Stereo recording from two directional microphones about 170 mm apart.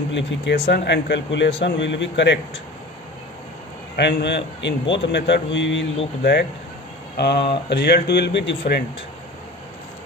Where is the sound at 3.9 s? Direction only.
85° left.